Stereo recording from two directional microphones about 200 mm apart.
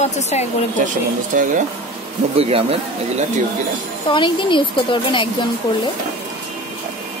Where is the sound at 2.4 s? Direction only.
30° right (ahead or behind).